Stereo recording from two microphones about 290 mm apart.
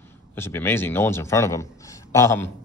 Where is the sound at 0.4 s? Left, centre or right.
Centre.